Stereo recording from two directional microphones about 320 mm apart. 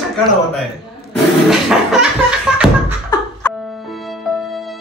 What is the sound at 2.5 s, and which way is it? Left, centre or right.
Beatboxing, centre.